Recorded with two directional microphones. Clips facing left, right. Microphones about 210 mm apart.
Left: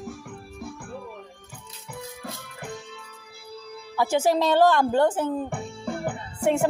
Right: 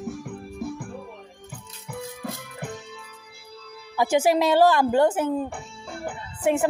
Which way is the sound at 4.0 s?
15° right (ahead or behind).